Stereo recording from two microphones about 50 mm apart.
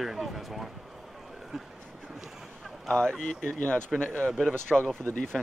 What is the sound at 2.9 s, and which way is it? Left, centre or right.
Speech, centre.